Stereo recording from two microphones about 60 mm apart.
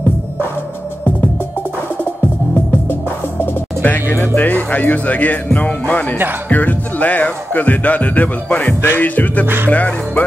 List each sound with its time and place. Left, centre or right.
2.9 s music: left